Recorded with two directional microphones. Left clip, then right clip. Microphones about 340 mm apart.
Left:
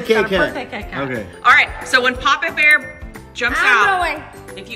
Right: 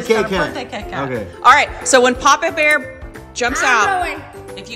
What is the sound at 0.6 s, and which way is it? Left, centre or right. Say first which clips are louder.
Speech: right 1 dB; centre.